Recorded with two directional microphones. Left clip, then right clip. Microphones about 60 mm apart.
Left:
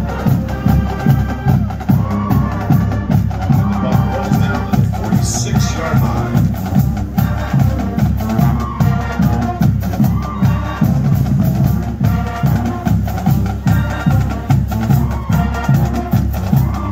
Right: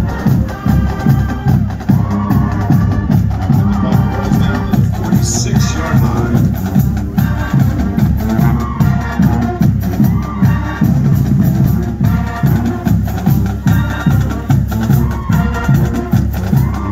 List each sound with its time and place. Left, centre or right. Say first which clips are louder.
0.2 s music: right 1 dB; right
4.3 s music: right 1 dB; right
7.2 s music: right 2 dB; centre
12.0 s music: left 1 dB; centre
14.9 s music: right 2 dB; centre